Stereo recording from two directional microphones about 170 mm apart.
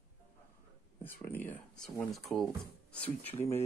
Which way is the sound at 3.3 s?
40° left (ahead or behind).